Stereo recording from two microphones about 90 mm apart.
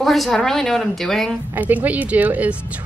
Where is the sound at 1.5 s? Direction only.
20° right (ahead or behind).